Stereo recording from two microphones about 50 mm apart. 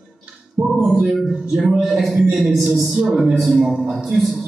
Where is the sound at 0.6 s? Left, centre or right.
Right.